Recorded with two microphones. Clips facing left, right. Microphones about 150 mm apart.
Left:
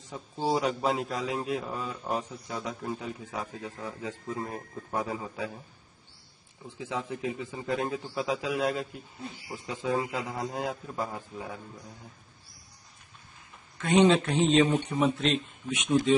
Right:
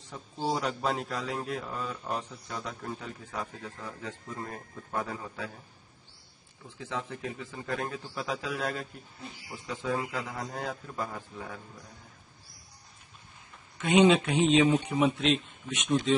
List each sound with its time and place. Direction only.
0.1 s a man's voice: 10° left (ahead or behind)
6.8 s a man's voice: 15° left (ahead or behind)
9.5 s a man's voice: 15° left (ahead or behind)
13.7 s a man's voice: centre (ahead or behind)
15.9 s a man's voice: 10° left (ahead or behind)